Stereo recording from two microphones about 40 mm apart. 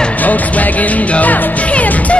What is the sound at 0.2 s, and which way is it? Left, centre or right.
Music, left.